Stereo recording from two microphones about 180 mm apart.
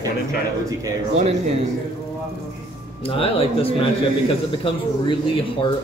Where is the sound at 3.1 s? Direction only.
30° left (ahead or behind).